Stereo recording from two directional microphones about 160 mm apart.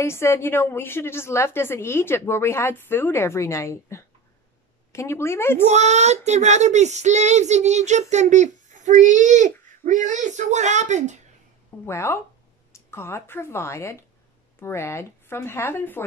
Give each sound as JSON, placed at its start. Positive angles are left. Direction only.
{"t": 0.0, "sound": "a woman's voice", "side_deg": 15}
{"t": 5.7, "sound": "speech", "side_deg": -45}
{"t": 11.8, "sound": "a woman's voice", "side_deg": 15}